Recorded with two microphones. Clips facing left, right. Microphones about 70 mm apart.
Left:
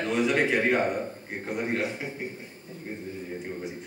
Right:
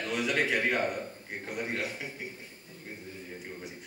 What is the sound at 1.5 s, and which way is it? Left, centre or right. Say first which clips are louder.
Speech: left 6 dB; centre.